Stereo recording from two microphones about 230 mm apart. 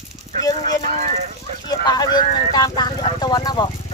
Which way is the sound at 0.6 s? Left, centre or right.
Right.